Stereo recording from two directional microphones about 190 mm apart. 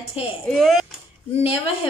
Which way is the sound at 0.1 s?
30° left (ahead or behind).